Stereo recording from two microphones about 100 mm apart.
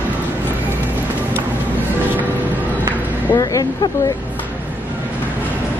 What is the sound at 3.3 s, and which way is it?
Vehicle, 35° left (ahead or behind).